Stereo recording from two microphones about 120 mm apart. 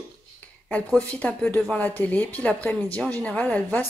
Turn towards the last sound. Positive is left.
turn(degrees=15)  # may be behind; listen again after turning